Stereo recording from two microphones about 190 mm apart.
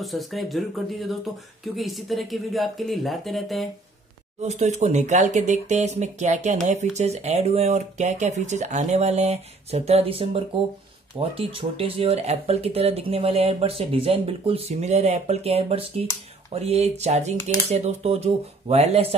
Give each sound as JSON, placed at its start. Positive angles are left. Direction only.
{"t": 0.0, "sound": "speech", "side_deg": 0}
{"t": 4.4, "sound": "speech", "side_deg": -35}